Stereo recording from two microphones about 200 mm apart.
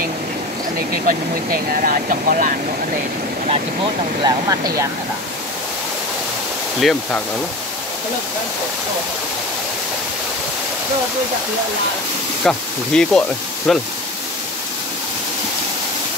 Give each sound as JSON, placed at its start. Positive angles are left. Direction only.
{"t": 0.7, "sound": "speech", "side_deg": -45}
{"t": 4.2, "sound": "speech", "side_deg": -20}
{"t": 6.8, "sound": "speech", "side_deg": 0}
{"t": 12.4, "sound": "speech", "side_deg": 5}